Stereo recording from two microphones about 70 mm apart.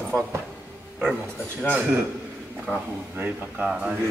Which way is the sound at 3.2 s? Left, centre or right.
Right.